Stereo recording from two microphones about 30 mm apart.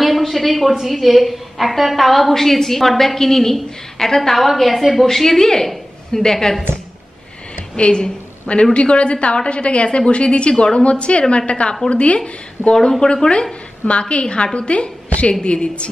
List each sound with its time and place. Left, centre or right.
0.0 s a sound: centre
0.7 s a woman's voice: centre
4.4 s a woman's voice: centre
7.7 s a woman's voice: left
13.0 s speech: left
13.8 s a woman's voice: left
15.0 s a sound: left
15.4 s a woman's voice: left